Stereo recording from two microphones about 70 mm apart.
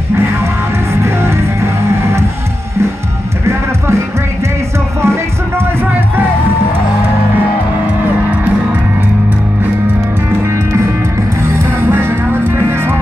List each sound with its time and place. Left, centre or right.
1.0 s music: right
5.0 s music: right
10.4 s music: right
11.9 s music: right